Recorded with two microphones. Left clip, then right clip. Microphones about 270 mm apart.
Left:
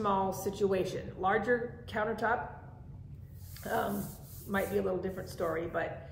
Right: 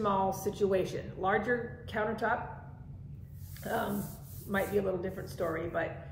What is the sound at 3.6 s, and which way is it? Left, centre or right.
A woman's voice, centre.